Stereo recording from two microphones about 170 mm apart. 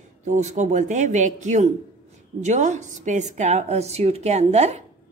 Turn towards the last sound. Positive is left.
turn(degrees=-40)  # may be behind; listen again after turning